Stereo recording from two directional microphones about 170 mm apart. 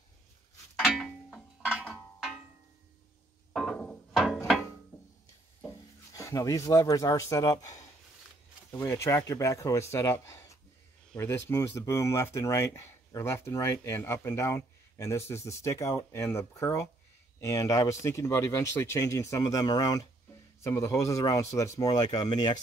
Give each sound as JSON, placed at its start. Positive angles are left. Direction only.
{"t": 0.7, "sound": "music", "side_deg": 0}
{"t": 1.9, "sound": "a sound", "side_deg": 0}
{"t": 3.5, "sound": "music", "side_deg": 0}
{"t": 6.1, "sound": "speech", "side_deg": 20}